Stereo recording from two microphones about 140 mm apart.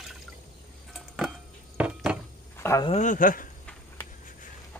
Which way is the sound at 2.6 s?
20° left (ahead or behind).